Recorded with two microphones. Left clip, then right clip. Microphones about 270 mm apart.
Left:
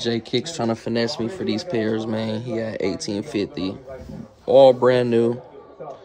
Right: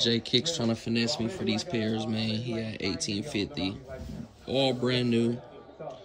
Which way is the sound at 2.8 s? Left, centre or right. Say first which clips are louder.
Left 7 dB; centre.